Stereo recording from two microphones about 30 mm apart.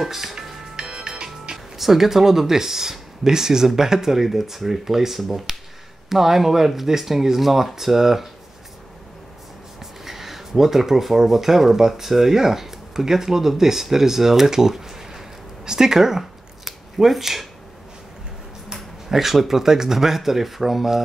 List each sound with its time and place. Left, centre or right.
0.0 s speech: centre
0.7 s music: right
1.8 s speech: centre
9.8 s speech: centre
18.7 s a sound: centre
19.4 s speech: centre